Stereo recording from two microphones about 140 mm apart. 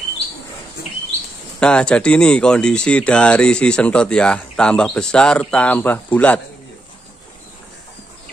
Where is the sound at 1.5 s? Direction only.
5° left (ahead or behind).